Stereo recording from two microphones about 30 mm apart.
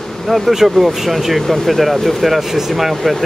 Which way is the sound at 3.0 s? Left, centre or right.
Centre.